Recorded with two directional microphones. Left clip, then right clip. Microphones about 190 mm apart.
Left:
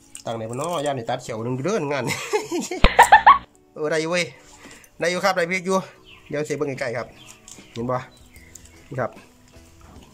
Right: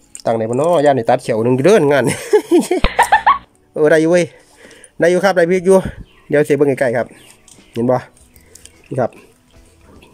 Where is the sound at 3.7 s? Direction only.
40° right (ahead or behind).